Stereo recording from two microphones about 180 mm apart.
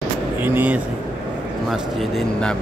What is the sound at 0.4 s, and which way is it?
Speech, 10° right (ahead or behind).